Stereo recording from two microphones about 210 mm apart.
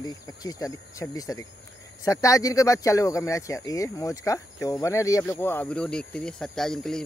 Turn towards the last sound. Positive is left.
turn(degrees=5)  # may be behind; listen again after turning